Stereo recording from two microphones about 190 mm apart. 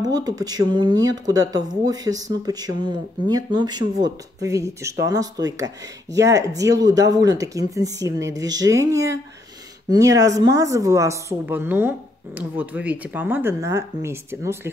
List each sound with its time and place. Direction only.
0.0 s speech: 20° right (ahead or behind)